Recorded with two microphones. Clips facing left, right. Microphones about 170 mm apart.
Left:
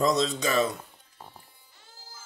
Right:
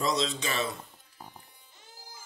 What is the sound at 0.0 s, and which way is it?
Speech, 45° left (ahead or behind).